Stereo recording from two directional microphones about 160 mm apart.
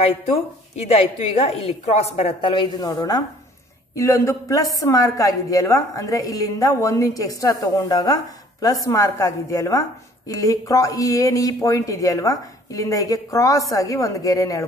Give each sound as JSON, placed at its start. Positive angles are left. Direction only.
{"t": 0.0, "sound": "a woman's voice", "side_deg": 40}